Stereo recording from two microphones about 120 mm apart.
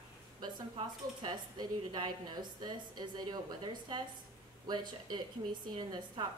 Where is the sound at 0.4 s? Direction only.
40° right (ahead or behind).